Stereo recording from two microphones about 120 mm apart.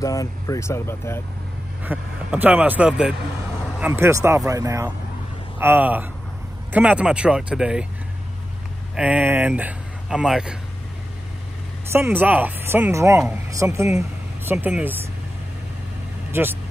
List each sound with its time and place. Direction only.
0.0 s speech: 30° left (ahead or behind)
1.8 s a man's voice: 15° right (ahead or behind)
3.8 s speech: 20° right (ahead or behind)
5.6 s a man's voice: 15° right (ahead or behind)
8.9 s a man's voice: 10° right (ahead or behind)
11.9 s a man's voice: 20° right (ahead or behind)
16.3 s vehicle: 20° right (ahead or behind)